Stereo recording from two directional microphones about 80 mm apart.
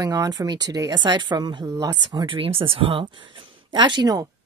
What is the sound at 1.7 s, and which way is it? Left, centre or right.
Speech, right.